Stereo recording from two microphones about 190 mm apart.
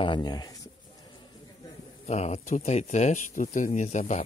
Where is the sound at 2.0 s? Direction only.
35° left (ahead or behind).